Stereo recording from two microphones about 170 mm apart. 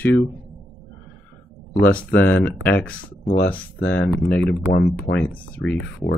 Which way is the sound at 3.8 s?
90° left.